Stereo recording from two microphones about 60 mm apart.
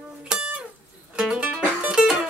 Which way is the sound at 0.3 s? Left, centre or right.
Centre.